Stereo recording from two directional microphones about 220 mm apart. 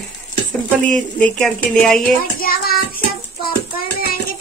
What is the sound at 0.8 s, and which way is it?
Speech, 5° left (ahead or behind).